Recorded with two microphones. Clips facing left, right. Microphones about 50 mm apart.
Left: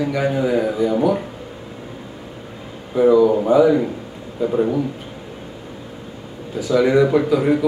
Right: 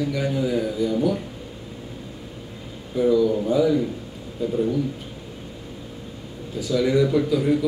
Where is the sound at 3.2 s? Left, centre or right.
Left.